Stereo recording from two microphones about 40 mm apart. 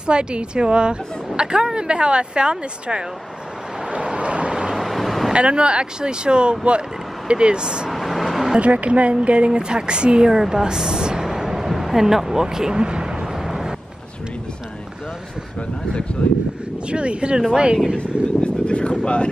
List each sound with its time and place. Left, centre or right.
0.0 s speech: right
3.9 s vehicle: right
4.7 s vehicle: centre
5.3 s speech: right
7.9 s vehicle: centre
8.5 s speech: right
13.4 s vehicle: centre
16.2 s a sound: left
16.9 s speech: right
17.9 s vehicle: left
19.0 s speech: left